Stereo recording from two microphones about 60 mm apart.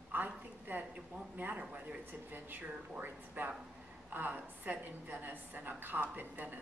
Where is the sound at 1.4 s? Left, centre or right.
Right.